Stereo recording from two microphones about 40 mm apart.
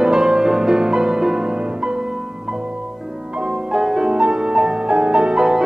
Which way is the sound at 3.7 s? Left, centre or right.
Centre.